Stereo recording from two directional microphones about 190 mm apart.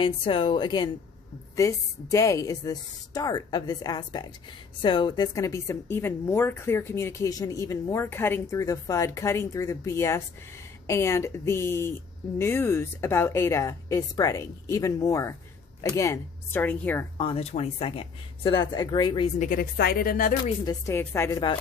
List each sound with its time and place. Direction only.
0.0 s a woman's voice: 30° left (ahead or behind); by 17.0 s 10° left (ahead or behind)
17.2 s a woman's voice: 30° left (ahead or behind)
19.3 s a woman's voice: 45° left (ahead or behind)
20.4 s a woman's voice: 20° left (ahead or behind)